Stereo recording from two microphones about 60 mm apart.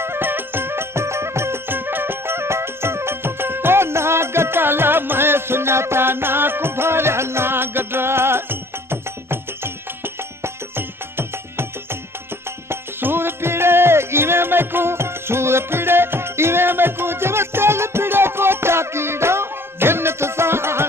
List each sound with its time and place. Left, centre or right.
0.0 s music: right